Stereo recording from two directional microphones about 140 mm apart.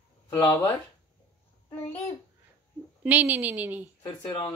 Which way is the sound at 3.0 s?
10° right (ahead or behind).